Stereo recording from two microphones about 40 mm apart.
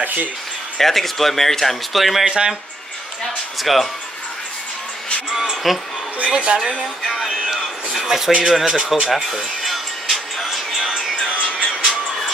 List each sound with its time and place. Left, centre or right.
0.0 s speech: right
0.7 s speech: centre
2.2 s a woman's voice: right
3.6 s speech: centre
5.3 s speech: centre
6.3 s a woman's voice: right
7.2 s a sound: centre
8.5 s speech: centre
9.1 s music: centre
11.4 s music: right